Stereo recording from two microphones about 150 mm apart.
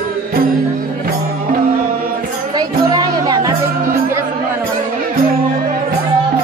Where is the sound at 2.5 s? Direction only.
25° right (ahead or behind).